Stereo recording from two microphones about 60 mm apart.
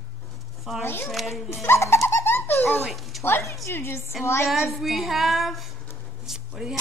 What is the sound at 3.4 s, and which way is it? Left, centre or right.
Speech, left.